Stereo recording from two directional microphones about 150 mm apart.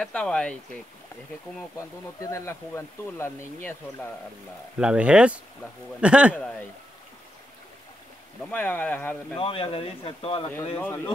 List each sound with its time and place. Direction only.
0.0 s speech: 5° left (ahead or behind)
2.2 s speech: 20° left (ahead or behind)
4.7 s speech: 5° right (ahead or behind)
8.5 s speech: 10° left (ahead or behind)
9.4 s speech: 35° left (ahead or behind)
10.5 s speech: 15° left (ahead or behind)